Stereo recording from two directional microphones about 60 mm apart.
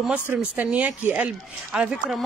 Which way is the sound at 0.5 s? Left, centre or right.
Right.